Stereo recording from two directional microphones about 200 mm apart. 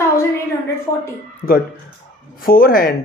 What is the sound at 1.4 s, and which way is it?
Speech, 40° left (ahead or behind).